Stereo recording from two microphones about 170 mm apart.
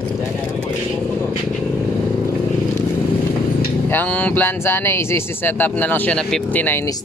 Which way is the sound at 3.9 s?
10° left (ahead or behind).